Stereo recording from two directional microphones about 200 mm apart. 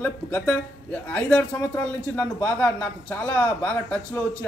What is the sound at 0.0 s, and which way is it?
Speech, 10° left (ahead or behind).